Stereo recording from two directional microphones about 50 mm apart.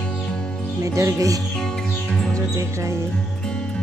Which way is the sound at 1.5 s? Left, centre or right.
Centre.